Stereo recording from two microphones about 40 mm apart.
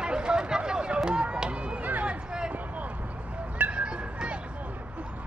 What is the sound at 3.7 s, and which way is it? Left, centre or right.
Music, right.